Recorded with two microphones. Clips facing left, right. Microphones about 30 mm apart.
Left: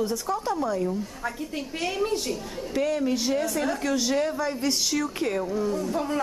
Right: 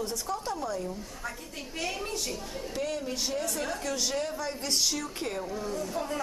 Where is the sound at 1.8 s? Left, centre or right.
Centre.